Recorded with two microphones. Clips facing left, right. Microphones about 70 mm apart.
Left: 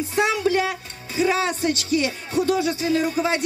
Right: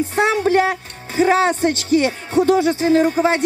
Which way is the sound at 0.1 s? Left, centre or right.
Right.